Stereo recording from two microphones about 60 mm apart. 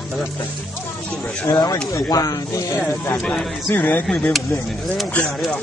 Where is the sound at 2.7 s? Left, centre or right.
Left.